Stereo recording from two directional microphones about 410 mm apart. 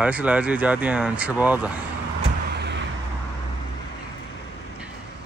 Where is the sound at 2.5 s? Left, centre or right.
Right.